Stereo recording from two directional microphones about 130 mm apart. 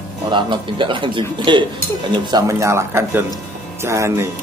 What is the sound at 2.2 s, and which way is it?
A man's voice, 25° right (ahead or behind).